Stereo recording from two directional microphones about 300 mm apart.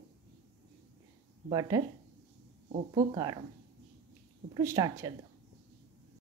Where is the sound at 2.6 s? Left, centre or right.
Right.